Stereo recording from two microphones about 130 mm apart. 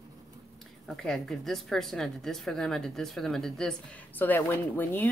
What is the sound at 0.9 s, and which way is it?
Speech, centre (ahead or behind).